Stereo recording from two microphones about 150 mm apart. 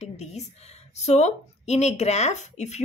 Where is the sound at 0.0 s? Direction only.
45° left (ahead or behind).